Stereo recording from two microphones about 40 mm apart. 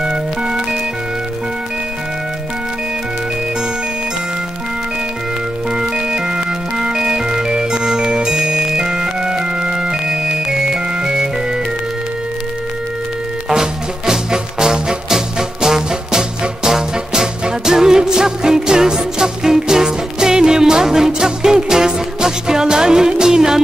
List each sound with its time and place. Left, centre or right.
0.0 s music: right
5.7 s music: centre
13.5 s music: centre